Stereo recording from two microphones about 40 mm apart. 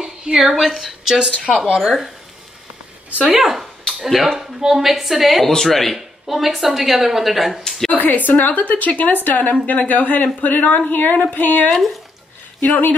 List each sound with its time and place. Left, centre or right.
0.0 s a sound: centre
0.6 s speech: centre
3.3 s speech: centre
4.4 s speech: centre
5.9 s speech: centre
7.6 s a sound: centre
7.9 s a woman's voice: left
11.7 s speech: centre